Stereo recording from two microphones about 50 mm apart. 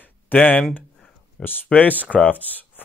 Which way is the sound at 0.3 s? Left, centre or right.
Left.